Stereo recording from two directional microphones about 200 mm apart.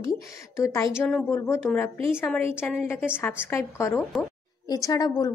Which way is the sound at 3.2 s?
10° left (ahead or behind).